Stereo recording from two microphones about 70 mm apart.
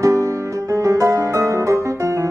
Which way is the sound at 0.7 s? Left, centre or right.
Right.